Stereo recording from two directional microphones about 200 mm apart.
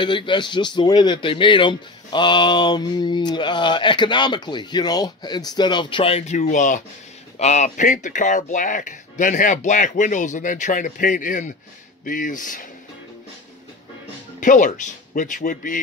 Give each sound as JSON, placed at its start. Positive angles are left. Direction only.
{"t": 0.0, "sound": "speech", "side_deg": 25}
{"t": 14.4, "sound": "speech", "side_deg": 40}